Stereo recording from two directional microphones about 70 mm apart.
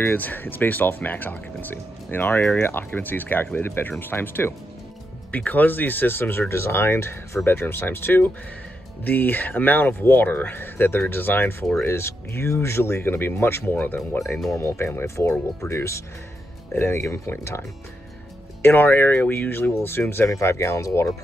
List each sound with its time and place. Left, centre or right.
0.0 s speech: left